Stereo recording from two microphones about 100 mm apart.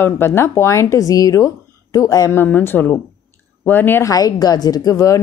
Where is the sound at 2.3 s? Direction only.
20° left (ahead or behind).